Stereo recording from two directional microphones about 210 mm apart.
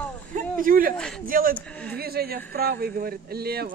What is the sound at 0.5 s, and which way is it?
A man's voice, 40° right (ahead or behind).